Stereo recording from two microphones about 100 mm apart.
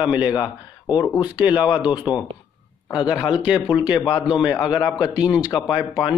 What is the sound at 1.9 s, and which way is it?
Speech, 50° left (ahead or behind).